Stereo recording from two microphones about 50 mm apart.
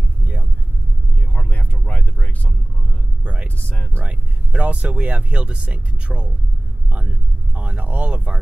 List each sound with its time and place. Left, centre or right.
1.5 s vehicle: left
3.5 s a sound: left
3.9 s speech: right